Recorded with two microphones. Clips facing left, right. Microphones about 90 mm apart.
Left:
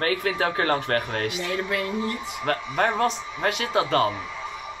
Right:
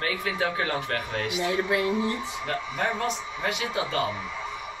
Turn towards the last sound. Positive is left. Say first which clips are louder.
# left 5 dB
turn(degrees=60)  # may be behind; listen again after turning